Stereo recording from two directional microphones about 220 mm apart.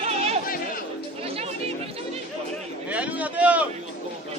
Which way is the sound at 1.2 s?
25° right (ahead or behind).